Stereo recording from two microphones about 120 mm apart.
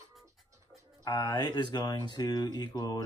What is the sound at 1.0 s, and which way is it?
Speech, 30° left (ahead or behind).